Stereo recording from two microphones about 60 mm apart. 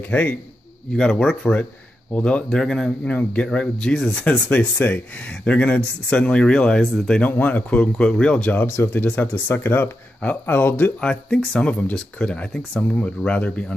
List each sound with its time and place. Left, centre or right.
0.1 s speech: left
0.9 s speech: centre
2.5 s speech: centre
3.1 s speech: left
7.2 s speech: left
8.6 s speech: left
8.9 s speech: left
11.0 s speech: centre